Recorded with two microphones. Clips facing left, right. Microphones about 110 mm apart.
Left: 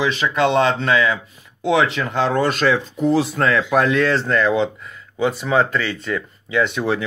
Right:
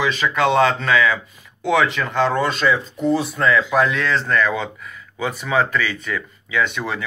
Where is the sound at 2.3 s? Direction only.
65° left (ahead or behind); by 4.2 s 45° left (ahead or behind).